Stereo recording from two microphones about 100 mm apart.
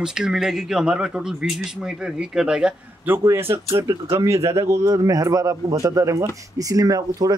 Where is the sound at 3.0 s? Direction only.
25° right (ahead or behind).